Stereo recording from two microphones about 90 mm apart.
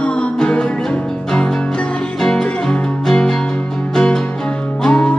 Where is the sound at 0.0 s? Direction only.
10° left (ahead or behind).